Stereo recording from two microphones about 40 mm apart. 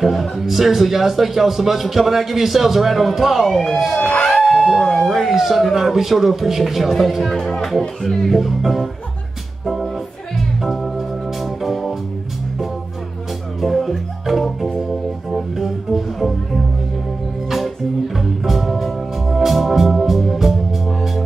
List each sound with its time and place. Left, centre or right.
0.0 s a man's voice: centre
4.0 s speech: left
4.6 s a sound: centre
5.0 s a man's voice: centre
10.6 s organ: centre
13.6 s music: centre
17.5 s music: centre